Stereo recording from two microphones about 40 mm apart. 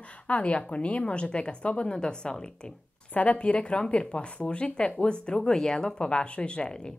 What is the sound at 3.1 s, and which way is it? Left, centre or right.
A woman's voice, left.